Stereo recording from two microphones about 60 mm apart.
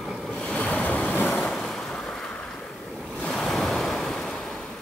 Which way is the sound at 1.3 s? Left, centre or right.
Centre.